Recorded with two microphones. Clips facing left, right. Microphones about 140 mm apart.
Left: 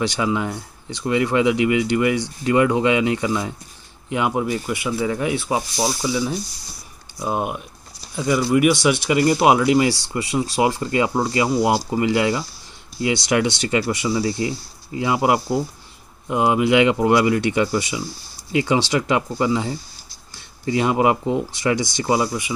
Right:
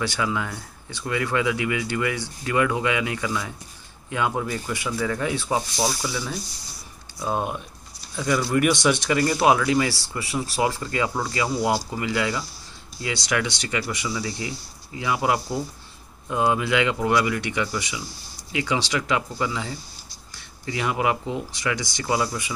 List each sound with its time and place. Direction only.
0.0 s speech: 20° left (ahead or behind)
9.4 s speech: 20° left (ahead or behind)